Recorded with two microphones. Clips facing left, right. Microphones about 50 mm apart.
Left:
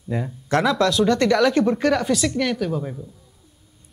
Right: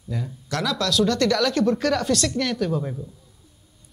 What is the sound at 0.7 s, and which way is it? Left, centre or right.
Speech, centre.